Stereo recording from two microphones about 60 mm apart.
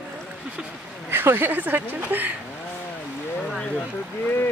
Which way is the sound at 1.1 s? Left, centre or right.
Right.